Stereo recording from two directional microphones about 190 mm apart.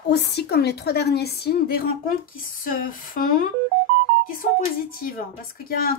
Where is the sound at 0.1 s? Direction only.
60° left (ahead or behind).